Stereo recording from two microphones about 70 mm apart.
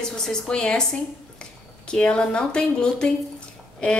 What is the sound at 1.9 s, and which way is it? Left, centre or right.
A woman's voice, centre.